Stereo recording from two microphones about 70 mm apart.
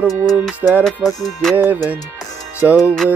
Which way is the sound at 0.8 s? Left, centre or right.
Centre.